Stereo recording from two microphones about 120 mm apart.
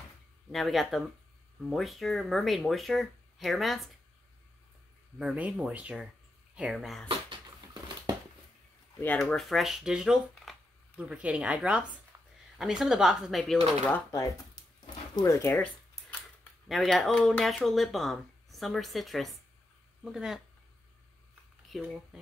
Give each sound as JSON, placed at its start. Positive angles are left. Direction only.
{"t": 0.5, "sound": "speech", "side_deg": 0}
{"t": 5.2, "sound": "a woman's voice", "side_deg": -10}
{"t": 8.9, "sound": "speech", "side_deg": 15}
{"t": 9.2, "sound": "a woman's voice", "side_deg": 0}
{"t": 14.1, "sound": "speech", "side_deg": 30}
{"t": 16.6, "sound": "speech", "side_deg": 0}
{"t": 21.6, "sound": "speech", "side_deg": 0}